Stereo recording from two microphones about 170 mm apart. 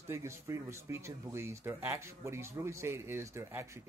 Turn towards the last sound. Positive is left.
turn(degrees=-15)  # may be behind; listen again after turning